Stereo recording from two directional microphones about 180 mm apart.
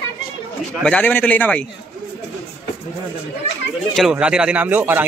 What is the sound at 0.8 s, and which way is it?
Speech, 10° left (ahead or behind).